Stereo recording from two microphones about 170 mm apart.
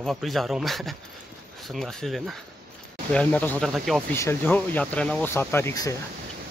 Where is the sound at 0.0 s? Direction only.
Centre (ahead or behind).